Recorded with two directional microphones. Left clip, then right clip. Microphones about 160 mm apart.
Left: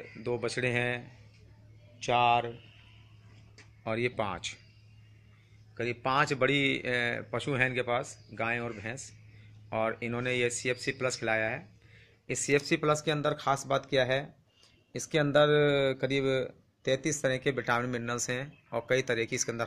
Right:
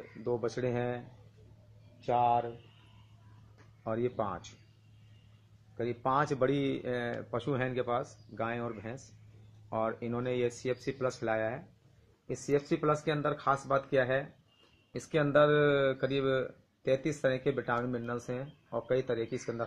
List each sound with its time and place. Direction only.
0.2 s speech: centre (ahead or behind)
2.0 s speech: 20° left (ahead or behind)
3.8 s speech: 5° left (ahead or behind)
6.1 s speech: centre (ahead or behind)
12.4 s speech: 15° left (ahead or behind); by 19.4 s centre (ahead or behind)